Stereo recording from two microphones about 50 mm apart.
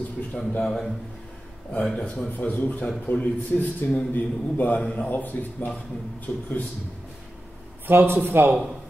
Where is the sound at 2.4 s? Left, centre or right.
Left.